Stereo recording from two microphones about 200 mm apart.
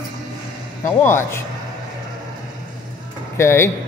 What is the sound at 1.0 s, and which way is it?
Speech, 10° left (ahead or behind).